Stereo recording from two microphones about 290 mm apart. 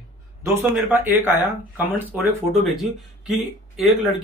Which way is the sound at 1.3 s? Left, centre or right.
Centre.